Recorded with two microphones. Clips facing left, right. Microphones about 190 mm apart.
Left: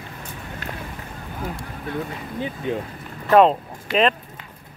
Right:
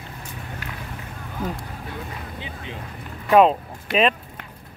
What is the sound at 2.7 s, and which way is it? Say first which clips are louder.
Speech: left 14 dB; 50° left (ahead or behind).